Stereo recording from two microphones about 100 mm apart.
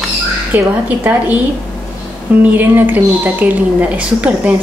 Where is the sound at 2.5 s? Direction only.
20° right (ahead or behind).